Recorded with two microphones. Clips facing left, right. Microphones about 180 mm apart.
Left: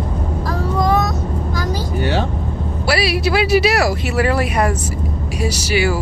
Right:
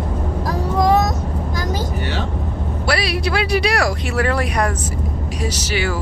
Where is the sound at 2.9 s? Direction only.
5° left (ahead or behind).